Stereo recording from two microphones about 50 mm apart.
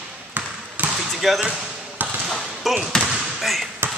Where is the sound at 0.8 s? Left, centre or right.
Right.